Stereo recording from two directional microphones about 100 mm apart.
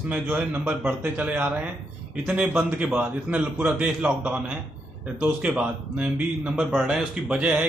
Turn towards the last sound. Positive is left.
turn(degrees=-10)  # may be behind; listen again after turning